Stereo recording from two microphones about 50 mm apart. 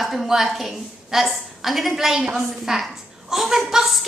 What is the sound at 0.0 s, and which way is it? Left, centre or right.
A woman's voice, centre.